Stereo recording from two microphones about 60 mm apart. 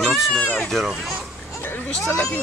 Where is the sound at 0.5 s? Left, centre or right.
Centre.